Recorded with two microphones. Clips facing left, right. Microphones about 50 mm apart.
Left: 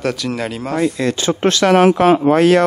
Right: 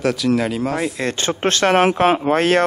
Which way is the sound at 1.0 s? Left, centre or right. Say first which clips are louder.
Left 4 dB; right.